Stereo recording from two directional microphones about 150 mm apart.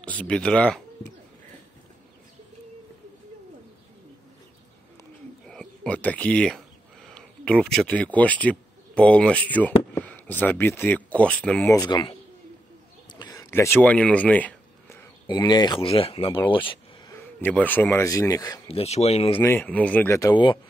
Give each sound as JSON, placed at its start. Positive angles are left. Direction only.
{"t": 0.0, "sound": "speech", "side_deg": 10}
{"t": 5.5, "sound": "speech", "side_deg": 5}
{"t": 11.7, "sound": "speech", "side_deg": 30}
{"t": 13.2, "sound": "a sound", "side_deg": 25}
{"t": 15.2, "sound": "speech", "side_deg": 30}
{"t": 17.1, "sound": "speech", "side_deg": 10}
{"t": 18.7, "sound": "speech", "side_deg": 45}
{"t": 19.4, "sound": "speech", "side_deg": 10}
{"t": 20.2, "sound": "speech", "side_deg": 30}